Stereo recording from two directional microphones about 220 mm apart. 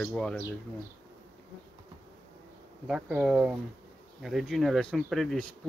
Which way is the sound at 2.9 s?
5° right (ahead or behind).